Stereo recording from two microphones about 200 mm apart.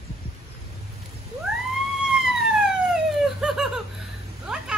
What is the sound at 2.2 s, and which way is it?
Police car, centre (ahead or behind).